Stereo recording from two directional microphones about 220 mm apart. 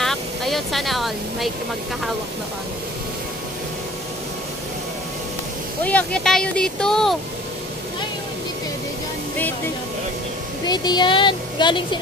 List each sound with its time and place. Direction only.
0.0 s speech: centre (ahead or behind)
5.9 s speech: 5° left (ahead or behind)
10.7 s speech: 20° left (ahead or behind)